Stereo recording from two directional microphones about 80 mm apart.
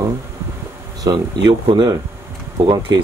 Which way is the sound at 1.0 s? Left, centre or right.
Right.